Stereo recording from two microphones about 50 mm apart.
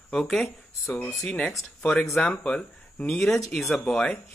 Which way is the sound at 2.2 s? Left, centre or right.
Left.